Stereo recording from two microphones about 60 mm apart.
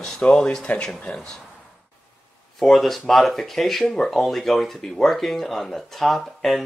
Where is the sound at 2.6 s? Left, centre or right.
Centre.